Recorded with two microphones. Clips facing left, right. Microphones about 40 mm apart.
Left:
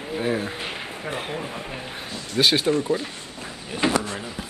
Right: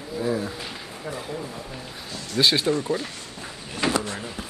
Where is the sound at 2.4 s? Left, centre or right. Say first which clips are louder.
Left 1 dB; left.